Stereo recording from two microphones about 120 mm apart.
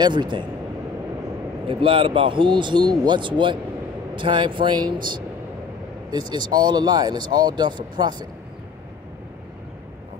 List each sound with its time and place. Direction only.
0.0 s speech: 40° right (ahead or behind)
1.7 s speech: 45° right (ahead or behind)